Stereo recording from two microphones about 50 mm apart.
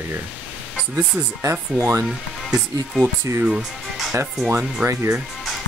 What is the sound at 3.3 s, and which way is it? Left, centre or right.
Speech, right.